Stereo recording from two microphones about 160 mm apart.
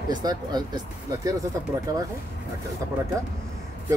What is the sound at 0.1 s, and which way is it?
Speech, 25° right (ahead or behind).